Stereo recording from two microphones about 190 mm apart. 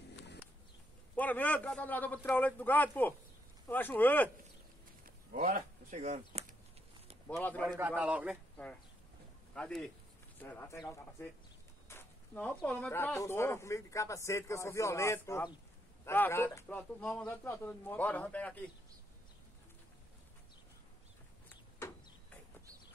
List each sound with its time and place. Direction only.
1.1 s speech: 10° left (ahead or behind)
5.0 s a sound: 50° right (ahead or behind)
7.2 s speech: 10° left (ahead or behind)
7.6 s speech: 10° right (ahead or behind)
8.6 s a man's voice: 5° left (ahead or behind)